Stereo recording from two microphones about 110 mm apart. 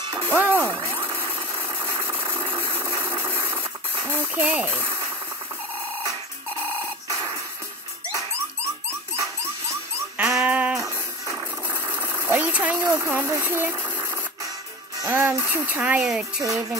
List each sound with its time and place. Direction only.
0.0 s music: 45° right (ahead or behind)
0.9 s engine: 20° right (ahead or behind)
4.1 s speech: 15° right (ahead or behind)
7.1 s music: 30° right (ahead or behind)
9.1 s a sound: 30° right (ahead or behind)
10.1 s music: 10° right (ahead or behind)
10.8 s music: 30° right (ahead or behind)
11.6 s engine: 20° right (ahead or behind)
12.8 s speech: 25° right (ahead or behind)
15.0 s speech: 15° right (ahead or behind)
16.0 s speech: 5° right (ahead or behind)